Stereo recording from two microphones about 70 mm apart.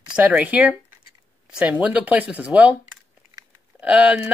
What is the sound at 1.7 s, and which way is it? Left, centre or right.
Speech, right.